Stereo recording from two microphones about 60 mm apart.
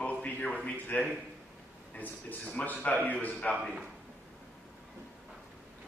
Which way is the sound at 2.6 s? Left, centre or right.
Left.